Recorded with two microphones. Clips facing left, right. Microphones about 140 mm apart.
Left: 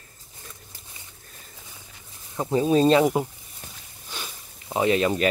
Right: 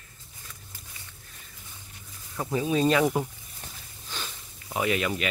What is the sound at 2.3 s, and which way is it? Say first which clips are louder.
Speech: left 5 dB; 25° left (ahead or behind).